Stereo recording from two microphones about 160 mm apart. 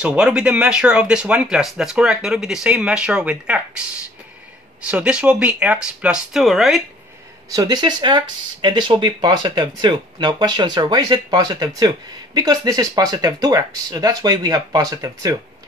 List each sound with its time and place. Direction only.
0.0 s speech: 5° right (ahead or behind)
4.8 s speech: 5° right (ahead or behind)
7.5 s speech: 25° right (ahead or behind)